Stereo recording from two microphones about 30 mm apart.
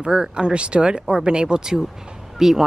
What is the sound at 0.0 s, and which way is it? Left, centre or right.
Speech, right.